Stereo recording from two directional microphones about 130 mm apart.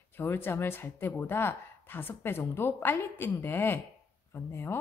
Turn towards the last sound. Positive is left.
turn(degrees=15)  # may be behind; listen again after turning